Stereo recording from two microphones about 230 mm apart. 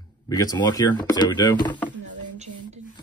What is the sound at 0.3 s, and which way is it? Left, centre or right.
Speech, centre.